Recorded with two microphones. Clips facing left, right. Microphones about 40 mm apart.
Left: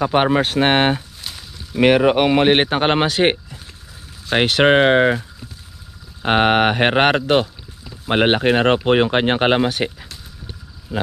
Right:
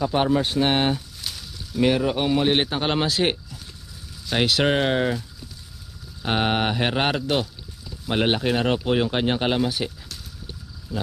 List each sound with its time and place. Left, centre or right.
0.0 s speech: left
1.2 s a sound: left
1.8 s speech: left
6.2 s speech: left